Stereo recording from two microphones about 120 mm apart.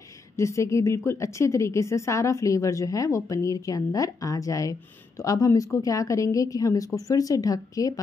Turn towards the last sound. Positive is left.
turn(degrees=30)  # may be behind; listen again after turning